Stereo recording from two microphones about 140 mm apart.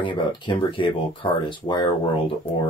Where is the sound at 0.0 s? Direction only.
35° left (ahead or behind).